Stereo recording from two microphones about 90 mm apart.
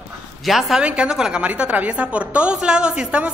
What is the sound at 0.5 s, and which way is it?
A woman's voice, 5° right (ahead or behind).